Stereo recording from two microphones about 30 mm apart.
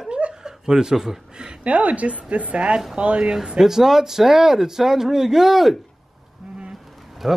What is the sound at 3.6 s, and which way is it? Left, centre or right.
Speech, centre.